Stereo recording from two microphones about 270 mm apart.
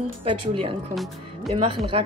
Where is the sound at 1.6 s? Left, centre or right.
Centre.